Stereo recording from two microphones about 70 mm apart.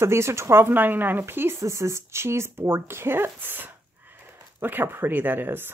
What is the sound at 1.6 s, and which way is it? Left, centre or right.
Speech, right.